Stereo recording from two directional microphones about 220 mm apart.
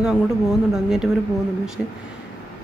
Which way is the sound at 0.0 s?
5° right (ahead or behind).